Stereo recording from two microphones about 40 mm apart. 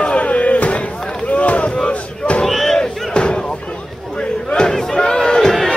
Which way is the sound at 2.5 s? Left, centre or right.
Centre.